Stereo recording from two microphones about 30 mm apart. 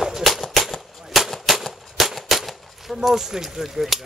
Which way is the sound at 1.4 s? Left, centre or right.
Centre.